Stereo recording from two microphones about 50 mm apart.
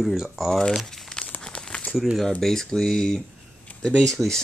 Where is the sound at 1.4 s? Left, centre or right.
Centre.